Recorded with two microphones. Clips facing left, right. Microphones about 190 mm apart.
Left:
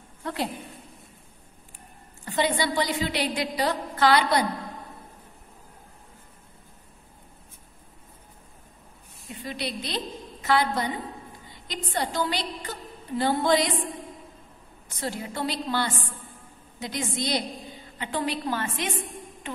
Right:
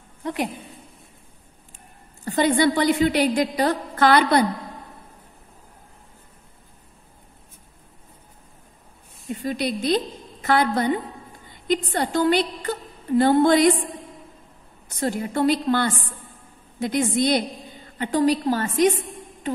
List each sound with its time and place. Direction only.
0.2 s a woman's voice: 15° right (ahead or behind)
2.2 s a woman's voice: 45° right (ahead or behind)
9.4 s a woman's voice: 45° right (ahead or behind)
15.0 s a woman's voice: 50° right (ahead or behind)
17.9 s a woman's voice: 45° right (ahead or behind)